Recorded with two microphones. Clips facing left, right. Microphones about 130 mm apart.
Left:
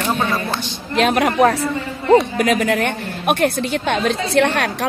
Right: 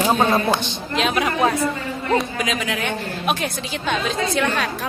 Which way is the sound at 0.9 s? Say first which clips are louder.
Left 5 dB; 55° left (ahead or behind).